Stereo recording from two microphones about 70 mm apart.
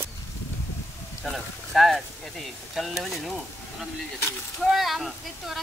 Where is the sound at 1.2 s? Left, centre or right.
Centre.